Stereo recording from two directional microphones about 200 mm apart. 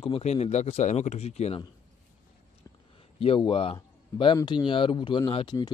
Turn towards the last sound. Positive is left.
turn(degrees=20)  # may be behind; listen again after turning